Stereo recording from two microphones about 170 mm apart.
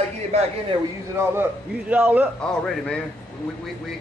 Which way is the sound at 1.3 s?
10° right (ahead or behind).